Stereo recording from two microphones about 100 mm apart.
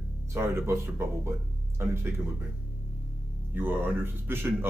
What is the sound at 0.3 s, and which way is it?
Speech, 25° right (ahead or behind).